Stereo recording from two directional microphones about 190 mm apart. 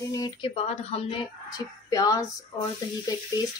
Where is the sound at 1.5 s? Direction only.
20° left (ahead or behind).